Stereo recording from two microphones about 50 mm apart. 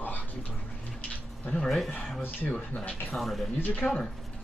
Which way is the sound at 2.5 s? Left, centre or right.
Left.